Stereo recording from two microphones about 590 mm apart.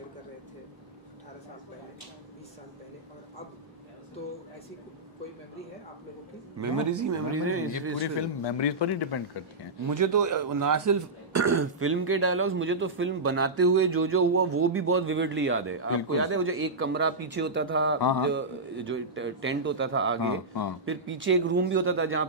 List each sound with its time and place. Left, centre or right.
6.6 s a man's voice: right
8.2 s a man's voice: left
9.8 s a man's voice: right